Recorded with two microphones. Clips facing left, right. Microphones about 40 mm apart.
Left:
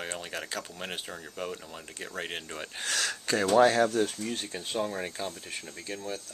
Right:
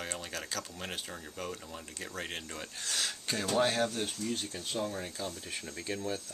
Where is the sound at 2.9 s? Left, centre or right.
Left.